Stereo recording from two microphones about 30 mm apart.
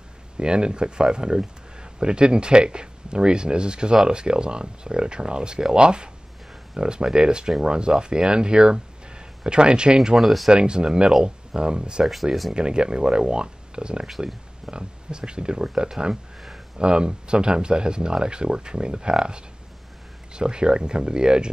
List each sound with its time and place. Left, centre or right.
0.4 s speech: right
9.9 s speech: centre
10.2 s speech: centre
10.5 s speech: right